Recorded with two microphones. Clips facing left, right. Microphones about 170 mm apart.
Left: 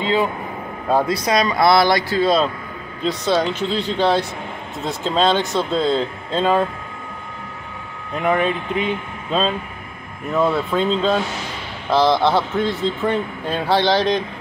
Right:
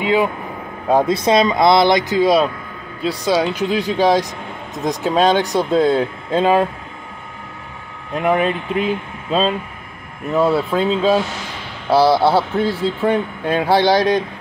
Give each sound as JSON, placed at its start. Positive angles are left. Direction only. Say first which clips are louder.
{"t": 0.0, "sound": "speech", "louder": "right 2 dB", "side_deg": -15}
{"t": 8.2, "sound": "speech", "louder": "right 2 dB", "side_deg": -5}